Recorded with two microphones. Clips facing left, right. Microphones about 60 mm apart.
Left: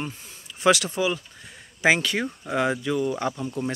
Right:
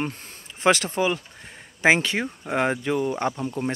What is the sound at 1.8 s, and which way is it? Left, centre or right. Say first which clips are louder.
Speech: right 1 dB; right.